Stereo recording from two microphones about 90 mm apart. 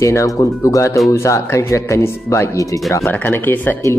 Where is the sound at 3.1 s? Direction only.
20° left (ahead or behind).